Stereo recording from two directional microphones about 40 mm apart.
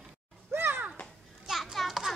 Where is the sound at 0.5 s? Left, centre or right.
Right.